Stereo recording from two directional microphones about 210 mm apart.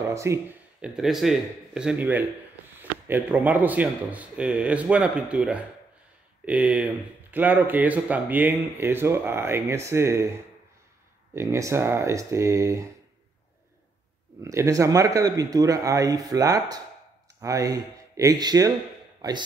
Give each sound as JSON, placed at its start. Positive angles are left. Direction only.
{"t": 0.0, "sound": "speech", "side_deg": -15}
{"t": 11.3, "sound": "speech", "side_deg": -15}
{"t": 14.4, "sound": "speech", "side_deg": -15}